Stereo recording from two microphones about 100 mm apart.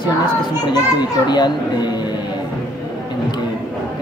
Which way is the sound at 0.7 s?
45° left (ahead or behind).